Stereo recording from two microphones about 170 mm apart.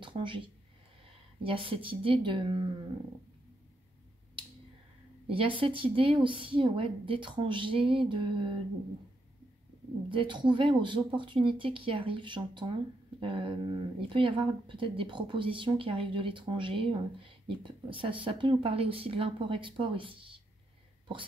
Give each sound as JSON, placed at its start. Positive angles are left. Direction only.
{"t": 0.0, "sound": "speech", "side_deg": -30}
{"t": 5.2, "sound": "speech", "side_deg": -30}
{"t": 10.0, "sound": "speech", "side_deg": -30}